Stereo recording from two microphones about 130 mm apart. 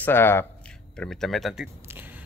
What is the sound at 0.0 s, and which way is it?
Speech, 15° left (ahead or behind).